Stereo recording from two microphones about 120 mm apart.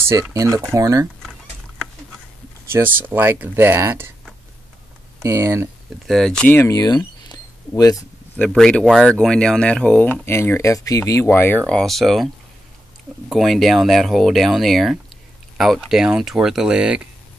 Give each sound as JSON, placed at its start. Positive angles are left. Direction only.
{"t": 0.3, "sound": "speech", "side_deg": -30}
{"t": 2.7, "sound": "speech", "side_deg": -15}
{"t": 5.2, "sound": "speech", "side_deg": -25}
{"t": 6.0, "sound": "speech", "side_deg": 5}
{"t": 6.6, "sound": "camera", "side_deg": 30}
{"t": 8.4, "sound": "speech", "side_deg": 10}
{"t": 10.2, "sound": "speech", "side_deg": 20}
{"t": 13.3, "sound": "speech", "side_deg": 0}